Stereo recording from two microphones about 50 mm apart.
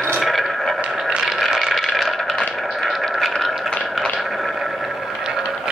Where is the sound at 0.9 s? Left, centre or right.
Centre.